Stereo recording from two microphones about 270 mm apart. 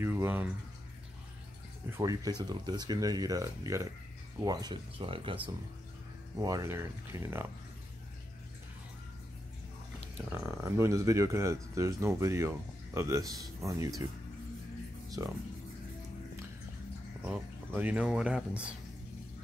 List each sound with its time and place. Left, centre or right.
0.0 s a sound: centre
1.9 s speech: centre
10.3 s speech: centre
15.2 s speech: centre
17.3 s speech: centre